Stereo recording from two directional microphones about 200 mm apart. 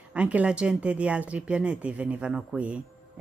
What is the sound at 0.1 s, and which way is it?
Speech, 5° right (ahead or behind).